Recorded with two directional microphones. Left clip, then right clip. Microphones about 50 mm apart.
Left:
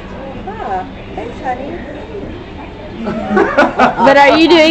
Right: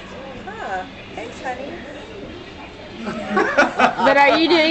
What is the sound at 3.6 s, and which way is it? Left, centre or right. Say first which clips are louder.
Speech: left 5 dB; centre.